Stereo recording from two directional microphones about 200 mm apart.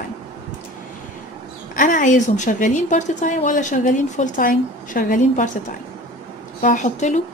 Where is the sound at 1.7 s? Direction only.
40° left (ahead or behind).